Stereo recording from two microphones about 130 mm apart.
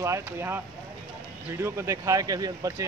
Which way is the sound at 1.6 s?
20° right (ahead or behind).